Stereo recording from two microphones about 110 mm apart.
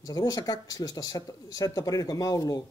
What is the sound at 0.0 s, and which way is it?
Speech, 35° left (ahead or behind).